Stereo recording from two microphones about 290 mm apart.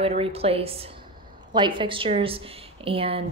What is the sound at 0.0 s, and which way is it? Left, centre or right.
Speech, right.